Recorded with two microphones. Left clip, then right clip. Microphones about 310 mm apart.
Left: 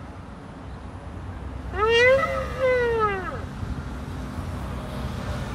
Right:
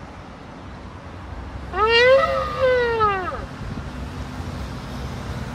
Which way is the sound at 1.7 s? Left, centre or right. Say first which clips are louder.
Right 3 dB; centre.